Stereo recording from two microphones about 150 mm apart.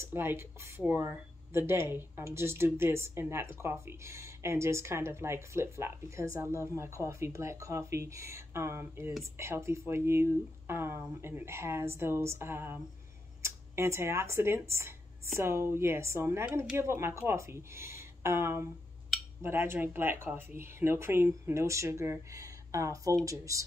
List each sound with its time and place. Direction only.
0.0 s speech: 15° right (ahead or behind)